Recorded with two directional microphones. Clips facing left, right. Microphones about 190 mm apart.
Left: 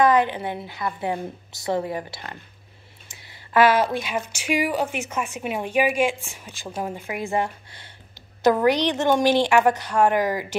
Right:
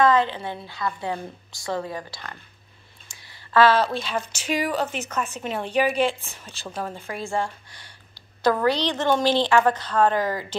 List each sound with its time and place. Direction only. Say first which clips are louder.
0.0 s a woman's voice: left 1 dB; 15° left (ahead or behind)